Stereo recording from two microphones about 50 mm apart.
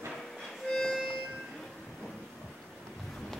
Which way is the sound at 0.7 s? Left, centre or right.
Centre.